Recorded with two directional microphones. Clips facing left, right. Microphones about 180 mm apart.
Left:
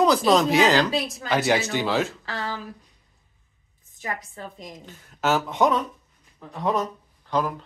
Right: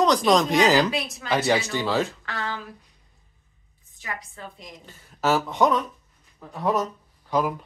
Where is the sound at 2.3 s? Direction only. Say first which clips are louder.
Left 1 dB; 35° left (ahead or behind).